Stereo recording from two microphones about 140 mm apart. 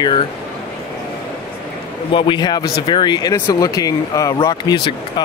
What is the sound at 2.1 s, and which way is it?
Speech, 35° left (ahead or behind).